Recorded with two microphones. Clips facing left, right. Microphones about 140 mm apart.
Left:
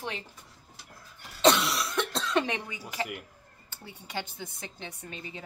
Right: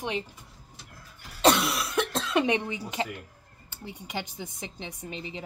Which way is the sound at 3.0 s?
25° right (ahead or behind).